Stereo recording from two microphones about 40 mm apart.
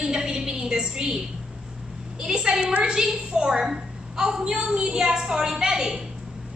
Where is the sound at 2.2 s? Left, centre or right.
Centre.